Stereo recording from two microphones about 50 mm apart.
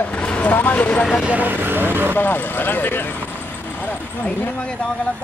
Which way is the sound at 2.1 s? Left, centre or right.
Left.